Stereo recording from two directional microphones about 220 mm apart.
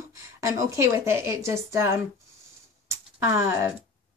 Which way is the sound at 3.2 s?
10° right (ahead or behind).